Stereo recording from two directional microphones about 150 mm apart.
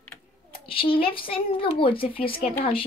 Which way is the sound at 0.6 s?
35° left (ahead or behind).